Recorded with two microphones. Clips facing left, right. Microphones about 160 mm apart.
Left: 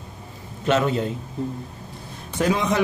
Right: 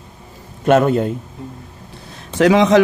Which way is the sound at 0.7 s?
50° right (ahead or behind).